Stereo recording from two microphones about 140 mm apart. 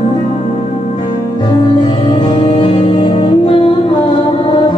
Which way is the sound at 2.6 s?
40° left (ahead or behind).